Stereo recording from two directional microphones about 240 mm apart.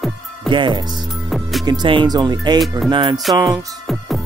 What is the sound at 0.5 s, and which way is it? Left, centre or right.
Speech, centre.